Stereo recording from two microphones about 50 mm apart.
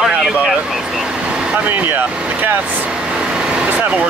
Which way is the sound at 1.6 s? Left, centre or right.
Right.